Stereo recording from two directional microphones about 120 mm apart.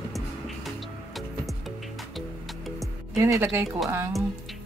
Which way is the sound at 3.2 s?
20° right (ahead or behind).